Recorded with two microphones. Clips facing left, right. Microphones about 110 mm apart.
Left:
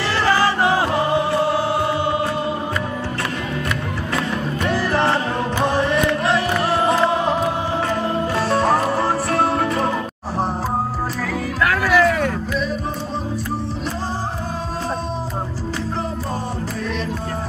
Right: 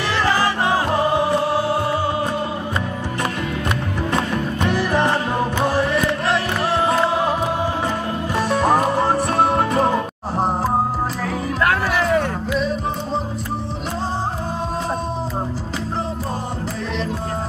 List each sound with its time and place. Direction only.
4.6 s music: 15° right (ahead or behind)
6.2 s music: centre (ahead or behind)
8.4 s music: 15° right (ahead or behind)
11.6 s music: 25° right (ahead or behind)